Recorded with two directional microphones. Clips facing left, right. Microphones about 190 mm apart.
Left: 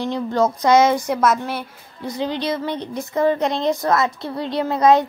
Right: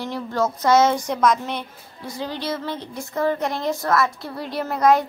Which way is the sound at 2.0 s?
20° left (ahead or behind).